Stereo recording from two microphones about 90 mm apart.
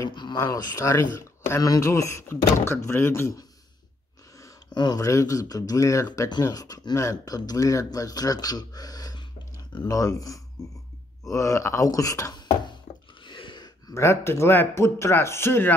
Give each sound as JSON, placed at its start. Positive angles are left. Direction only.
{"t": 0.1, "sound": "a sound", "side_deg": 55}
{"t": 0.4, "sound": "speech", "side_deg": 40}
{"t": 4.7, "sound": "speech", "side_deg": 50}
{"t": 6.0, "sound": "speech", "side_deg": 50}
{"t": 9.8, "sound": "speech", "side_deg": 40}
{"t": 13.2, "sound": "a sound", "side_deg": 65}
{"t": 13.9, "sound": "speech", "side_deg": 30}